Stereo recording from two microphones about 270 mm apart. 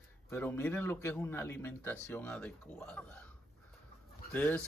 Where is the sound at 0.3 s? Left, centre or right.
Centre.